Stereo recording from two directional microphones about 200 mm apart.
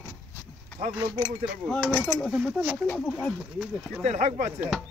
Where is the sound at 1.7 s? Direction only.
5° left (ahead or behind).